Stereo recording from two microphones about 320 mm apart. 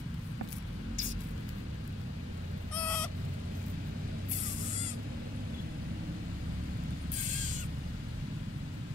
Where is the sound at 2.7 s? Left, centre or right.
Centre.